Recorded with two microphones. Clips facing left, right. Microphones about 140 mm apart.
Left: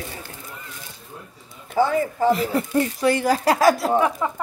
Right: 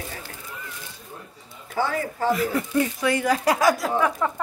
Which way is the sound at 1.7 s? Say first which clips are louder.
Left 6 dB; 15° left (ahead or behind).